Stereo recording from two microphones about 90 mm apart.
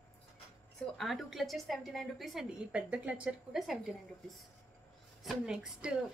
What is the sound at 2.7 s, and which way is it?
Speech, 15° right (ahead or behind).